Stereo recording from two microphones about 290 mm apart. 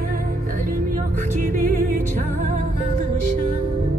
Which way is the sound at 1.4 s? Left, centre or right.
Right.